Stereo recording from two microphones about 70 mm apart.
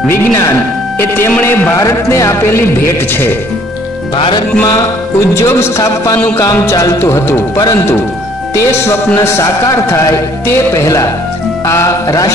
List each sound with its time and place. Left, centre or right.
0.9 s speech: left
1.8 s speech: left
5.3 s speech: left
8.8 s speech: left